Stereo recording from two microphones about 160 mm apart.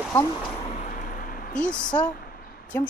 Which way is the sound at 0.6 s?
45° left (ahead or behind).